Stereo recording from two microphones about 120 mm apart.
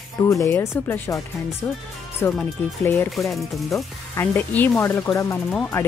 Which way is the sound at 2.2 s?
20° left (ahead or behind).